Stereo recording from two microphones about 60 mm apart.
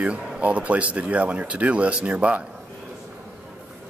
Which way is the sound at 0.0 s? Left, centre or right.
Right.